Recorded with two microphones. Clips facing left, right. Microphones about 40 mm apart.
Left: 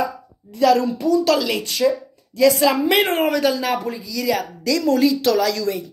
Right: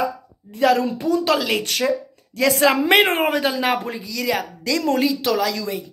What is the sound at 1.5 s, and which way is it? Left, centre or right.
Speech, right.